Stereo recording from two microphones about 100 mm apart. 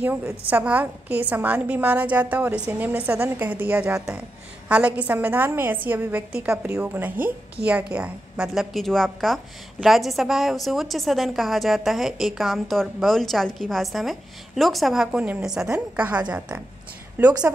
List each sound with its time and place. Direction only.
0.5 s a woman's voice: 15° right (ahead or behind)
3.9 s a woman's voice: 5° right (ahead or behind)
6.7 s a woman's voice: 20° right (ahead or behind)